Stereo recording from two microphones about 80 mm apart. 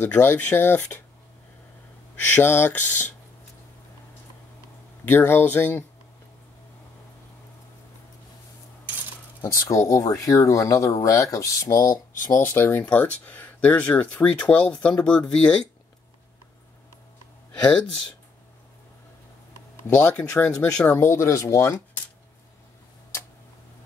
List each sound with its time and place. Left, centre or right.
0.0 s speech: left
2.3 s speech: left
5.1 s speech: left
9.4 s speech: left; by 15.7 s centre
20.0 s speech: left
20.9 s speech: left